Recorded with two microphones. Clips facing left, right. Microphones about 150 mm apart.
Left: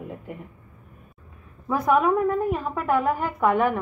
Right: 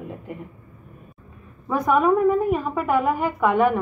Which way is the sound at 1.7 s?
5° left (ahead or behind).